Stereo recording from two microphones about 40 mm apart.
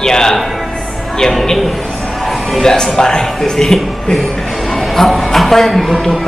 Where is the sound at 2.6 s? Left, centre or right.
Centre.